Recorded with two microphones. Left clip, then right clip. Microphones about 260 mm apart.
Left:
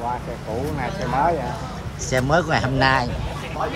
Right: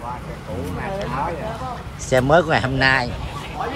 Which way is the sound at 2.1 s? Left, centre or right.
Centre.